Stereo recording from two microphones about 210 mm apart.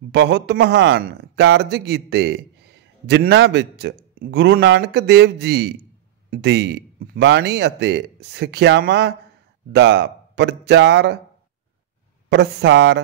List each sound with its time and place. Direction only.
0.1 s speech: 55° right (ahead or behind)
12.3 s speech: 55° right (ahead or behind)